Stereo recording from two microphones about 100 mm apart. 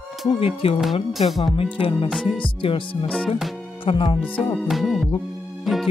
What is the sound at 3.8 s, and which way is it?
Music, 55° left (ahead or behind).